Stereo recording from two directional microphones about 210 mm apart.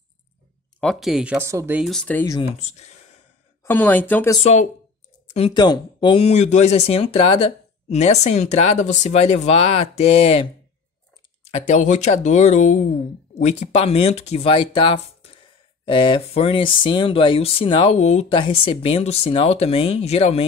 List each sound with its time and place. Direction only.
0.7 s speech: centre (ahead or behind)
2.6 s speech: 30° left (ahead or behind)
3.6 s speech: 10° left (ahead or behind)
4.4 s speech: 35° left (ahead or behind)
11.5 s speech: 35° left (ahead or behind)